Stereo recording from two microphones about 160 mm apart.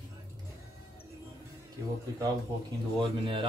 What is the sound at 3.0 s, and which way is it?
Speech, 35° right (ahead or behind).